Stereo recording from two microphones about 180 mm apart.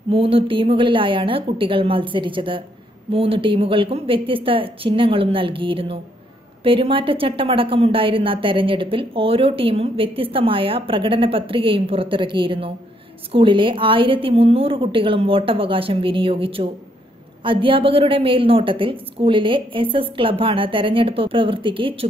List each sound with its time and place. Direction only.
0.1 s a woman's voice: 30° right (ahead or behind)